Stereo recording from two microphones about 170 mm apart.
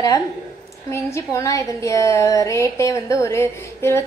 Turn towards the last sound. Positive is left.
turn(degrees=15)  # may be behind; listen again after turning